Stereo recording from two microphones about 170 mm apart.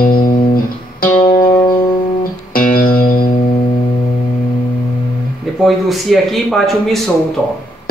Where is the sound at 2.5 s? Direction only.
55° left (ahead or behind).